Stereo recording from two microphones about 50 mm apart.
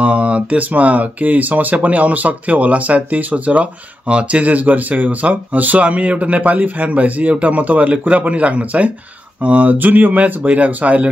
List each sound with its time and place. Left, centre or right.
0.0 s speech: right